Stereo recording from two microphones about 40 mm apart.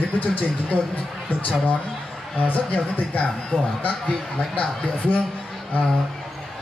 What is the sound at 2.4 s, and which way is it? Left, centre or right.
Speech, left.